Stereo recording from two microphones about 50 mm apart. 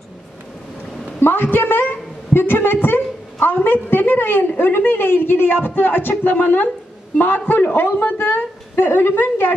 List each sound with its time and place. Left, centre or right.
1.2 s a woman's voice: left